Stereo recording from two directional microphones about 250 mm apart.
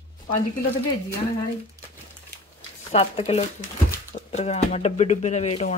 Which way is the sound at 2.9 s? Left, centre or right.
Left.